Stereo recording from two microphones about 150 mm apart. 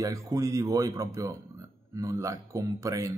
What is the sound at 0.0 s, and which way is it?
Speech, 20° right (ahead or behind).